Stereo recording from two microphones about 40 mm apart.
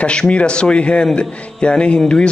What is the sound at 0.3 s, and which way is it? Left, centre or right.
A man's voice, left.